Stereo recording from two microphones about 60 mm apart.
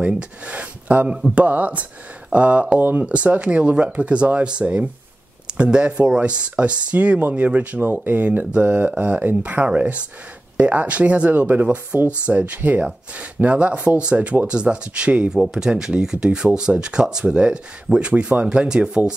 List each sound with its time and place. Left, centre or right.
0.5 s speech: right
7.8 s speech: right; by 19.1 s centre